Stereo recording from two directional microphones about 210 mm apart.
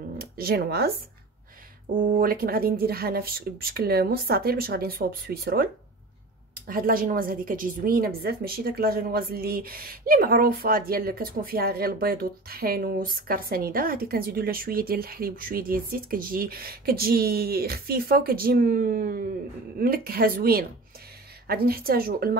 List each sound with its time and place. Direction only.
0.2 s speech: 45° right (ahead or behind)
2.0 s a woman's voice: 40° right (ahead or behind)